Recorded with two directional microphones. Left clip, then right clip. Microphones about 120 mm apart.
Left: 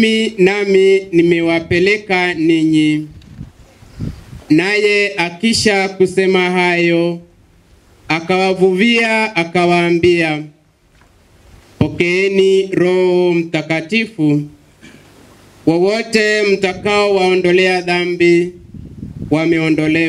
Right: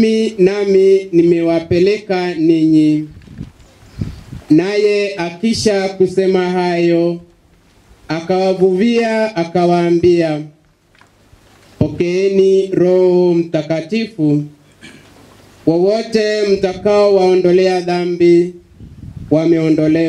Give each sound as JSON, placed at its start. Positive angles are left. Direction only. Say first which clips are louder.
{"t": 0.0, "sound": "speech", "louder": "even", "side_deg": 40}
{"t": 4.5, "sound": "speech", "louder": "even", "side_deg": 40}
{"t": 8.1, "sound": "speech", "louder": "left 1 dB", "side_deg": 40}
{"t": 11.8, "sound": "speech", "louder": "left 1 dB", "side_deg": 40}
{"t": 15.6, "sound": "speech", "louder": "right 1 dB", "side_deg": 40}